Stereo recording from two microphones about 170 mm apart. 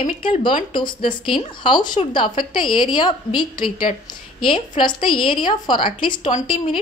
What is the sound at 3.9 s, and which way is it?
Speech, 40° left (ahead or behind).